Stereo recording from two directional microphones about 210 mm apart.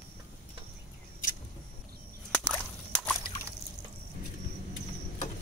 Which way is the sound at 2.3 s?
5° left (ahead or behind).